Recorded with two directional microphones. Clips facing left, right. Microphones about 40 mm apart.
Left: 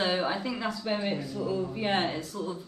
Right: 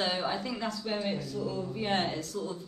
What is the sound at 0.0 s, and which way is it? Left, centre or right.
A woman's voice, centre.